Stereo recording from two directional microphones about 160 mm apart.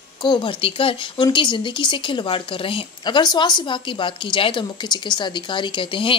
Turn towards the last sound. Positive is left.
turn(degrees=35)  # may be behind; listen again after turning